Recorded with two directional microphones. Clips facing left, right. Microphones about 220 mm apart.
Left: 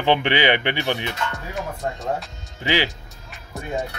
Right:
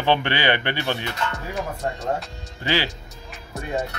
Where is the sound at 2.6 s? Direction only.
15° left (ahead or behind).